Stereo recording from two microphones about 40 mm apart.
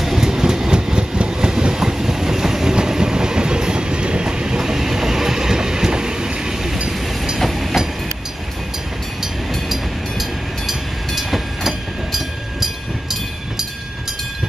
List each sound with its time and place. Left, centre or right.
0.0 s train: centre
7.3 s train: centre
10.7 s train: centre